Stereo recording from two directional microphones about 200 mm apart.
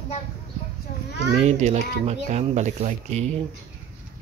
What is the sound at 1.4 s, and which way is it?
Speech, 35° right (ahead or behind).